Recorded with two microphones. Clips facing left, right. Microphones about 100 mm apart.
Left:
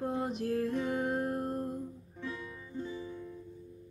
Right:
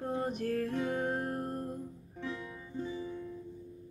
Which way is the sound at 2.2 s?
20° right (ahead or behind).